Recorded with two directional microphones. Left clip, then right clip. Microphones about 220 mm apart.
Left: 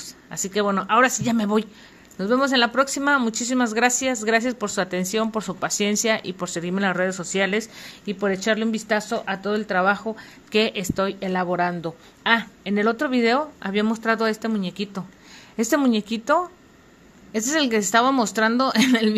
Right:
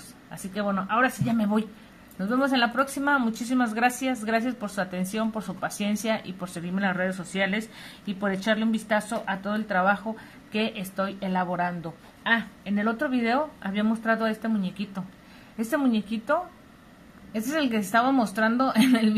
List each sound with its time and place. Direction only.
0.3 s a woman's voice: 45° left (ahead or behind)